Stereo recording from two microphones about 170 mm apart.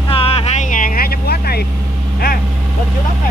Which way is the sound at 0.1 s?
35° left (ahead or behind).